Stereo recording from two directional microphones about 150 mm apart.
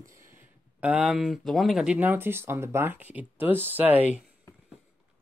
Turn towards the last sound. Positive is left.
turn(degrees=-10)  # may be behind; listen again after turning